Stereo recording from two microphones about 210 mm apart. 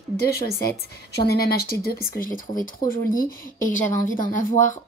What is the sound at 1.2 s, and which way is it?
A woman's voice, 50° left (ahead or behind).